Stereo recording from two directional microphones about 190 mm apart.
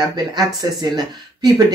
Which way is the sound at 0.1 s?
20° right (ahead or behind).